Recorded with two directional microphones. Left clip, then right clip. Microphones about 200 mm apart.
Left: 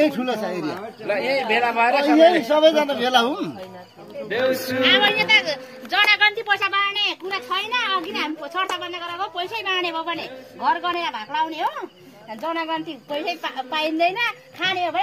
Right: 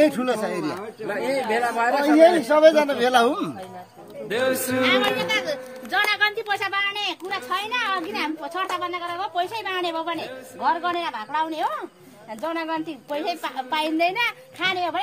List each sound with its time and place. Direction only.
0.0 s a woman's voice: 15° right (ahead or behind)
1.0 s a woman's voice: 55° right (ahead or behind)
2.0 s a man's voice: centre (ahead or behind); by 4.6 s 25° right (ahead or behind)
4.9 s a woman's voice: 60° right (ahead or behind)
6.4 s a child's voice: 40° right (ahead or behind)
9.8 s a woman's voice: 15° right (ahead or behind)